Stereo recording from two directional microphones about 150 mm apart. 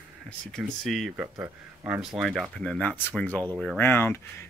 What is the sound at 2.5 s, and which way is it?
Speech, 5° left (ahead or behind).